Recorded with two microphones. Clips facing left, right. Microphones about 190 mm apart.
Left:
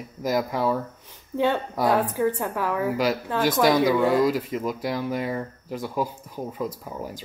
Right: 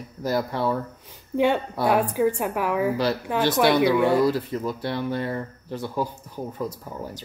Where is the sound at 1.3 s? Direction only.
15° right (ahead or behind).